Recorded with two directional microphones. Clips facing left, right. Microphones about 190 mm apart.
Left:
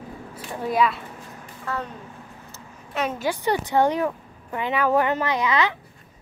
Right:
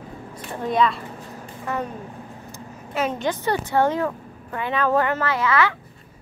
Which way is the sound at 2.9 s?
Centre (ahead or behind).